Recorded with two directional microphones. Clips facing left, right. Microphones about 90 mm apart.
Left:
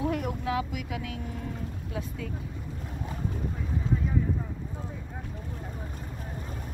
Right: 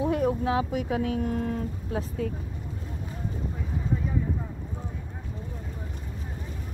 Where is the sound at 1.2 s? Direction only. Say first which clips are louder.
Right 9 dB; 55° right (ahead or behind).